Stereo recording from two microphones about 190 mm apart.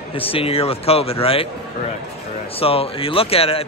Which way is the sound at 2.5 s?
30° left (ahead or behind).